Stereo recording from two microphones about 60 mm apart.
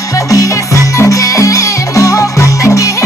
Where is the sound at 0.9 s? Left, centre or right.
Left.